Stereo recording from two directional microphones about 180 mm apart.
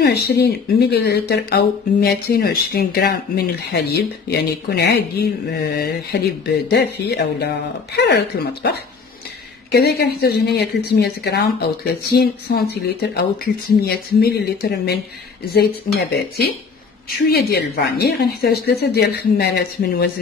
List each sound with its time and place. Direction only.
0.0 s speech: 65° left (ahead or behind)
9.7 s speech: 65° left (ahead or behind)
16.1 s speech: 60° left (ahead or behind)